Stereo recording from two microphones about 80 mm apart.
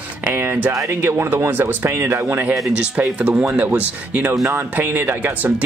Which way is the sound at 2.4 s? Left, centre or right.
Centre.